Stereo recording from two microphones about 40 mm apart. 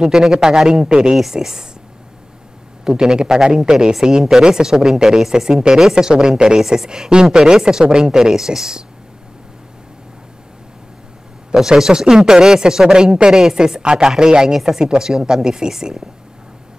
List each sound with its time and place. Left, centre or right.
0.0 s speech: centre
2.8 s a woman's voice: centre
11.5 s speech: centre